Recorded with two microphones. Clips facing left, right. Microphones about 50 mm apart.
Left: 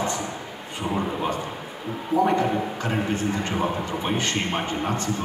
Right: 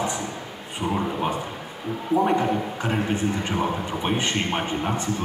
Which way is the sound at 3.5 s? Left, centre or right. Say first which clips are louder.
Even; centre.